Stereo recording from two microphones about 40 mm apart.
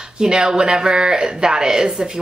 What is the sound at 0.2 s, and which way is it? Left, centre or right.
Speech, centre.